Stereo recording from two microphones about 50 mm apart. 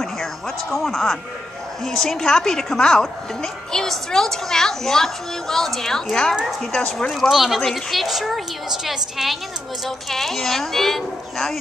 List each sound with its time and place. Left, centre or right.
0.0 s music: centre
1.9 s a woman's voice: centre
7.1 s a woman's voice: centre